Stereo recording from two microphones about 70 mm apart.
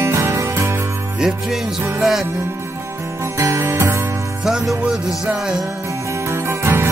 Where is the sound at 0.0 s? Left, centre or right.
Right.